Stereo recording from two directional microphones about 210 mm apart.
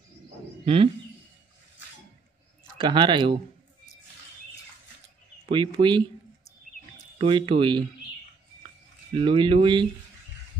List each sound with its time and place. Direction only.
2.8 s speech: 25° right (ahead or behind)
5.5 s speech: 20° right (ahead or behind)
7.2 s speech: 25° right (ahead or behind)
9.1 s speech: 25° right (ahead or behind)